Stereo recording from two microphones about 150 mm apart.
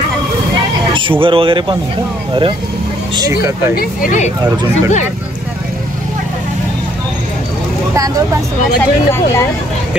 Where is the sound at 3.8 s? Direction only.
65° left (ahead or behind).